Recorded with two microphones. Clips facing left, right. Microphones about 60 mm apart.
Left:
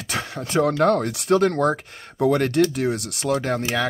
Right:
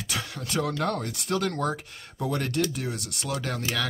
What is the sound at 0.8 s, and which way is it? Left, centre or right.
Speech, left.